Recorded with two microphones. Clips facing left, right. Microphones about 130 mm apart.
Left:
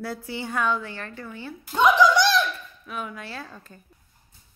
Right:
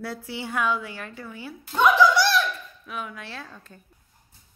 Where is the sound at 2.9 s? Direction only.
Centre (ahead or behind).